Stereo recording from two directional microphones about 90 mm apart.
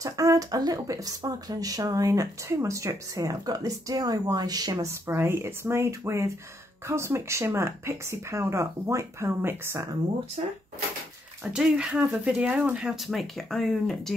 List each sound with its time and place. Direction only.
0.0 s speech: 40° right (ahead or behind)
4.8 s speech: 30° right (ahead or behind)
11.5 s speech: 5° right (ahead or behind)